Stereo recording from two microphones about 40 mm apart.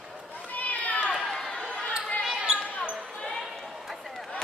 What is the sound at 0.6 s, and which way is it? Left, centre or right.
Run, left.